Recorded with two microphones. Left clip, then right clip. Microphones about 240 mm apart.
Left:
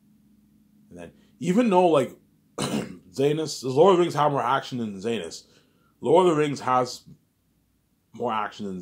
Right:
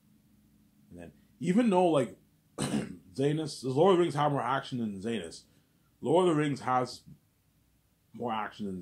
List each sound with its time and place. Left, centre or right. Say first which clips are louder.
0.9 s speech: left 6 dB; centre
8.1 s speech: left 7 dB; centre